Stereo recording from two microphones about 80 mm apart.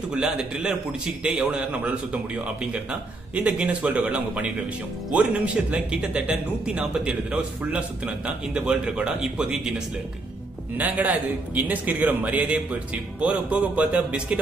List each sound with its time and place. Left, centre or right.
0.1 s a man's voice: centre
10.8 s a man's voice: right